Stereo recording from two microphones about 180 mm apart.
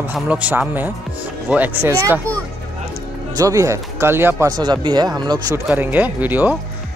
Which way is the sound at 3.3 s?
20° right (ahead or behind).